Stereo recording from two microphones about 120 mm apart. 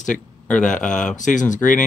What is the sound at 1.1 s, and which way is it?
Speech, 90° left.